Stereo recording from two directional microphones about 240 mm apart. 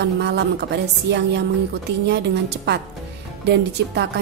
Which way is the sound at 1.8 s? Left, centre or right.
Right.